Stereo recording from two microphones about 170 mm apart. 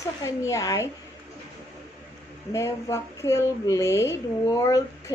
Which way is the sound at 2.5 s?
15° left (ahead or behind).